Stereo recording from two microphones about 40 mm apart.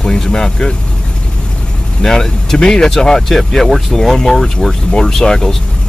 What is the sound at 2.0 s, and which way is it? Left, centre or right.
Speech, centre.